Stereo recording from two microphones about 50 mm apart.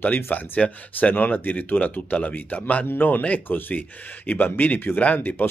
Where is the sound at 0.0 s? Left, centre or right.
Left.